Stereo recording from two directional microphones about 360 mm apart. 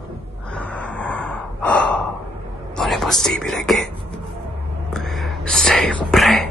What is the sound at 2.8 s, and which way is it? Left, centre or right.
Whispering, centre.